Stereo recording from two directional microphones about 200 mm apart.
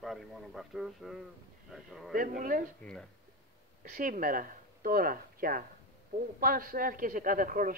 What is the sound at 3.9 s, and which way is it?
Speech, 45° right (ahead or behind).